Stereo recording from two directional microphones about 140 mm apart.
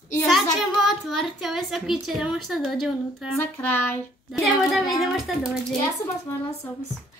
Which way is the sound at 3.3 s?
15° left (ahead or behind).